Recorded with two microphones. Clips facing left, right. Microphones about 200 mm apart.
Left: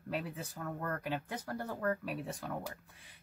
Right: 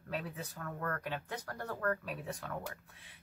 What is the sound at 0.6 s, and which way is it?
Speech, 15° left (ahead or behind).